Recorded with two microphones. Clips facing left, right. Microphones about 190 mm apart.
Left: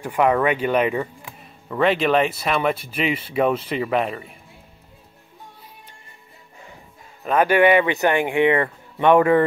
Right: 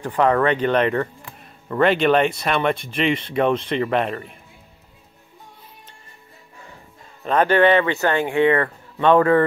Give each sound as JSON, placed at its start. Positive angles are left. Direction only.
{"t": 0.0, "sound": "speech", "side_deg": 10}
{"t": 7.2, "sound": "speech", "side_deg": 10}